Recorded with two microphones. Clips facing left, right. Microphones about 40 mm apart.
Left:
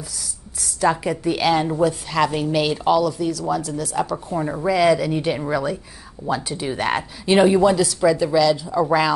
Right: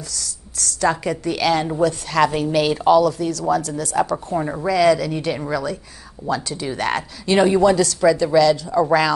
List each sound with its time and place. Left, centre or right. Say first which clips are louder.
0.1 s a woman's voice: right 3 dB; centre
4.6 s a woman's voice: right 1 dB; centre
8.6 s a woman's voice: right 2 dB; centre